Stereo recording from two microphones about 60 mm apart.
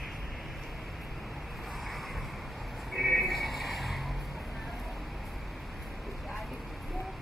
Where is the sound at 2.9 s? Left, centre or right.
Centre.